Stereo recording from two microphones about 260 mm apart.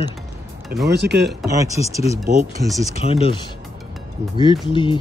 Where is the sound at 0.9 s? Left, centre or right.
Right.